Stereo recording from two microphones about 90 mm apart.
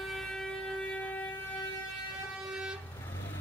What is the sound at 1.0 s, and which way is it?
Siren, 15° left (ahead or behind).